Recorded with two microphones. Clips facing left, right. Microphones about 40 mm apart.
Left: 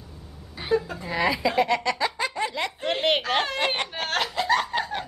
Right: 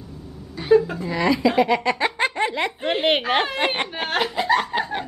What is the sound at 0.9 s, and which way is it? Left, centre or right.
Speech, centre.